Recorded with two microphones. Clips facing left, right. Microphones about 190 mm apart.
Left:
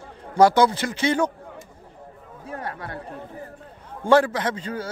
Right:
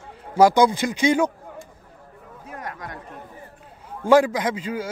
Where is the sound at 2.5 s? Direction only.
30° left (ahead or behind).